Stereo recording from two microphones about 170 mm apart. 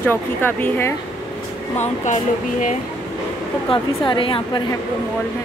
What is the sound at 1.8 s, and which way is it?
Speech, 45° left (ahead or behind).